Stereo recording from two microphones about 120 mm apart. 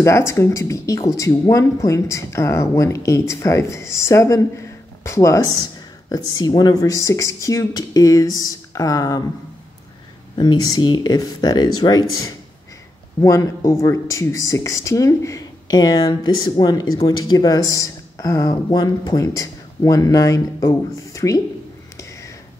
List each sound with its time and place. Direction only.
0.0 s speech: 25° left (ahead or behind)
10.3 s speech: 35° left (ahead or behind)